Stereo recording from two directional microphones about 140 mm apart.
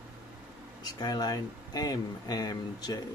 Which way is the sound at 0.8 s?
30° left (ahead or behind).